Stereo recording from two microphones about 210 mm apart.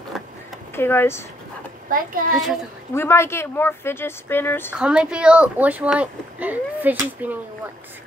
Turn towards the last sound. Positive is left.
turn(degrees=-10)  # may be behind; listen again after turning